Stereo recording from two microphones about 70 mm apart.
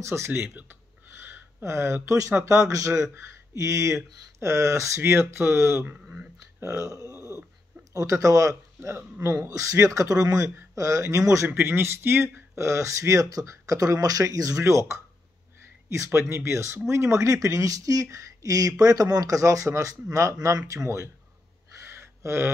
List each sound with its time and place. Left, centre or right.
0.0 s speech: right
0.3 s speech: right
1.3 s a sound: right
2.0 s speech: right
7.0 s a sound: left
7.9 s speech: right
11.4 s speech: right
14.6 s speech: right
16.1 s speech: right
21.7 s a sound: right